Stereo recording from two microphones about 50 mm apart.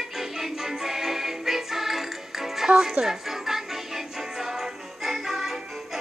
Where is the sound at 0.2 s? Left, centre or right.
Centre.